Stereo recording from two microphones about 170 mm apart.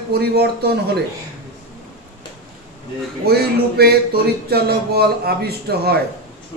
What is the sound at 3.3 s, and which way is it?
Speech, 70° right (ahead or behind).